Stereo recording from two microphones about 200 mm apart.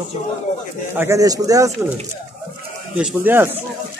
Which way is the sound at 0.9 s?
15° right (ahead or behind).